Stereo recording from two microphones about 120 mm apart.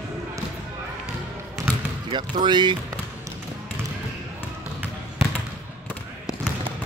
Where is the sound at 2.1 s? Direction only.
40° right (ahead or behind).